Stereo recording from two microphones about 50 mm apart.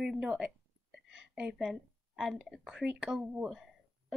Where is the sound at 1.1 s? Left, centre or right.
Centre.